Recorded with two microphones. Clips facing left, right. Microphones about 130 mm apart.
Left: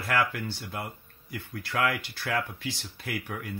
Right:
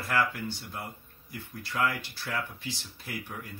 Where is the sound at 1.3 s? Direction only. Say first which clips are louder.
Left 4 dB; 75° left (ahead or behind).